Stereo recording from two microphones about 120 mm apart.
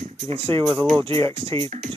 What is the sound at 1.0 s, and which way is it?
Speech, 50° right (ahead or behind).